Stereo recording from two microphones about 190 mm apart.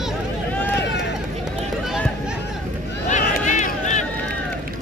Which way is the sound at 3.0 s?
40° left (ahead or behind).